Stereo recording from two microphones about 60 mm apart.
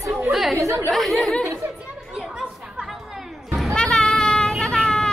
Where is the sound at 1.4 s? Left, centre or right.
Right.